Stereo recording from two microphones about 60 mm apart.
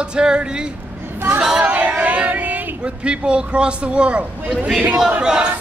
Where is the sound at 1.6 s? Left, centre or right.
Right.